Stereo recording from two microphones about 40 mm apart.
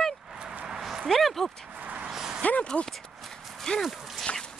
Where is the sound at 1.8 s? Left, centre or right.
Right.